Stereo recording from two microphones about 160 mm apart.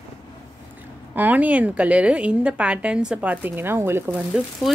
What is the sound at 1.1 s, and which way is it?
A woman's voice, 10° right (ahead or behind).